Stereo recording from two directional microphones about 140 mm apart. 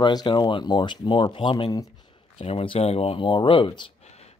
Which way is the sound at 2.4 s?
40° left (ahead or behind).